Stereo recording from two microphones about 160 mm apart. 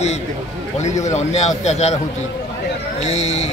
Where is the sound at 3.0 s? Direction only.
45° left (ahead or behind).